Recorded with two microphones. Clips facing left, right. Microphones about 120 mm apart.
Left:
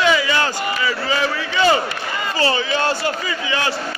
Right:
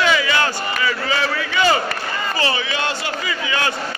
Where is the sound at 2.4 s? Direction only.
35° left (ahead or behind).